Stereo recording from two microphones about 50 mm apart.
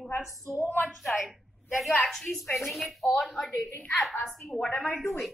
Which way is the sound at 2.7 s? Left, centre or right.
Centre.